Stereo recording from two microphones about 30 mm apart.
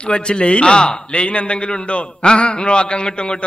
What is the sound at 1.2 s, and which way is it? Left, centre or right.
A man's voice, left.